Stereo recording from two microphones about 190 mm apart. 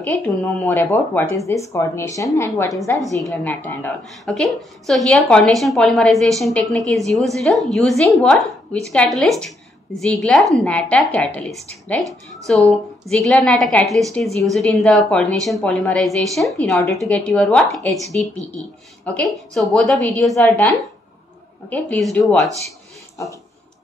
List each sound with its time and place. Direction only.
0.0 s a woman's voice: 5° left (ahead or behind)
19.1 s a woman's voice: centre (ahead or behind)
20.3 s speech: 15° left (ahead or behind)
21.6 s a woman's voice: 5° left (ahead or behind)